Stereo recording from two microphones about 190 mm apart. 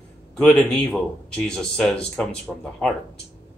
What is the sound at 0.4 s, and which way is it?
A man's voice, 5° left (ahead or behind).